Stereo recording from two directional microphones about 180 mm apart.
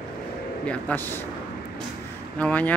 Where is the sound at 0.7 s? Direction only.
10° left (ahead or behind).